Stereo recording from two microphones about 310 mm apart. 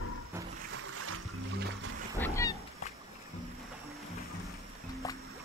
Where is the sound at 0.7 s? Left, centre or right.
Right.